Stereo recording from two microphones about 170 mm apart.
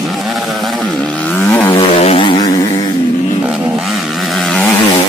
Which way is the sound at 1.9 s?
35° left (ahead or behind).